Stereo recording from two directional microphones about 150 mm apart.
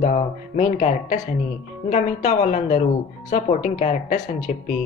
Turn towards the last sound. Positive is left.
turn(degrees=55)  # may be behind; listen again after turning